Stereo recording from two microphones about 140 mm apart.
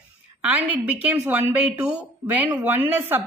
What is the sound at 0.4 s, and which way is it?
A woman's voice, 10° right (ahead or behind).